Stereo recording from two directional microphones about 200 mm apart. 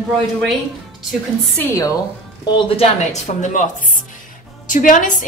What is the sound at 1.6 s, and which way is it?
Speech, 15° left (ahead or behind).